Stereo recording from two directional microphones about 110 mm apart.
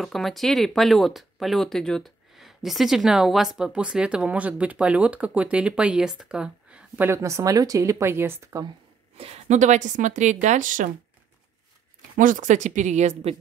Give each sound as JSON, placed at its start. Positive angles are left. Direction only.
{"t": 0.0, "sound": "speech", "side_deg": 0}
{"t": 7.1, "sound": "speech", "side_deg": -30}
{"t": 9.1, "sound": "speech", "side_deg": -65}
{"t": 12.4, "sound": "speech", "side_deg": -90}